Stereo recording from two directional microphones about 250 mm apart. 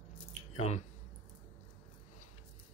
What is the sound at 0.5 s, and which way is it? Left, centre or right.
Speech, left.